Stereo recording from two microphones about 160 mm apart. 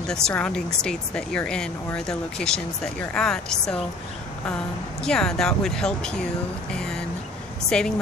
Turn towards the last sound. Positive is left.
turn(degrees=5)  # may be behind; listen again after turning